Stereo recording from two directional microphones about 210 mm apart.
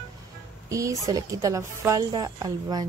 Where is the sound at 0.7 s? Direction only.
15° right (ahead or behind).